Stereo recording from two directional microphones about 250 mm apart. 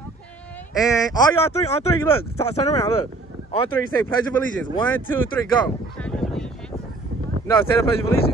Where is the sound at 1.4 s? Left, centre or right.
Left.